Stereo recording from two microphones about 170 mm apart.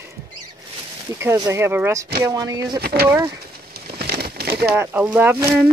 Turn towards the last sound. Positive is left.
turn(degrees=-10)  # may be behind; listen again after turning